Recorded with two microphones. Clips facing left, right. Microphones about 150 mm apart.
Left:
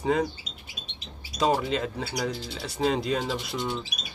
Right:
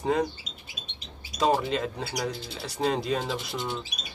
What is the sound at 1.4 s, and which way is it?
Rub, centre (ahead or behind).